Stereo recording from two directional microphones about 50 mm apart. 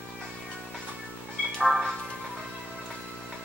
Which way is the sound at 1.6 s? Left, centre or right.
Centre.